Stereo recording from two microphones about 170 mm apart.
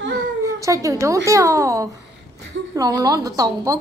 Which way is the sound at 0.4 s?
20° right (ahead or behind).